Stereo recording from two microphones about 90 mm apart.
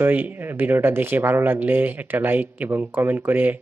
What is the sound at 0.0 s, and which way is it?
Speech, 20° right (ahead or behind).